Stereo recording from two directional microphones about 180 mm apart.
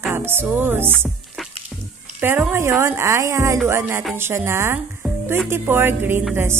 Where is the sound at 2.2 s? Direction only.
10° right (ahead or behind).